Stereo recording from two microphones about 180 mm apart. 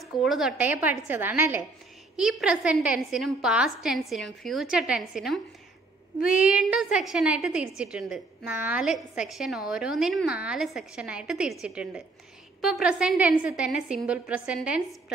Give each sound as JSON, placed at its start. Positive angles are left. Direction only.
{"t": 0.0, "sound": "a woman's voice", "side_deg": 0}